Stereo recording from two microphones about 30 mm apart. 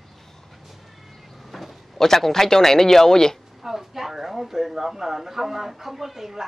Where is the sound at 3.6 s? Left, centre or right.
Centre.